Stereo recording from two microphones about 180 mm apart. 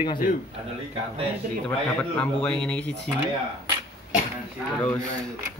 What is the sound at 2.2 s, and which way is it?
Speech, 5° left (ahead or behind).